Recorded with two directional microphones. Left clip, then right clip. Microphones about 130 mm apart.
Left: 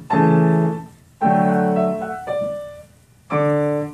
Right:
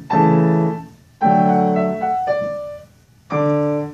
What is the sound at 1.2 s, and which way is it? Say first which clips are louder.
Music: right 3 dB; 15° right (ahead or behind).